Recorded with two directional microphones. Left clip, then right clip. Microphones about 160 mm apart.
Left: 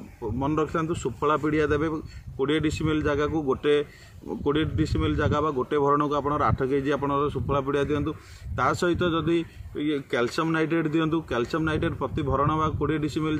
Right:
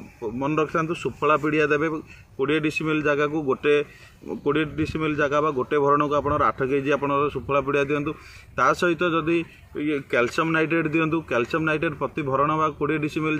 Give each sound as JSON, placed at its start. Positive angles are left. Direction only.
{"t": 0.4, "sound": "a man's voice", "side_deg": 20}